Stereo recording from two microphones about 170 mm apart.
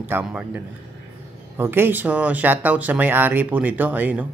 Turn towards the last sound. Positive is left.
turn(degrees=-10)  # may be behind; listen again after turning